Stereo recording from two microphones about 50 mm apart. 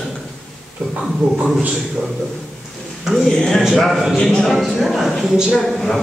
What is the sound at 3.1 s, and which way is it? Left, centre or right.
Speech, centre.